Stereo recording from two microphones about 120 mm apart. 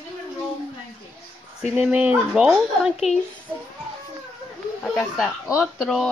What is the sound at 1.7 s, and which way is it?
Speech, 10° right (ahead or behind).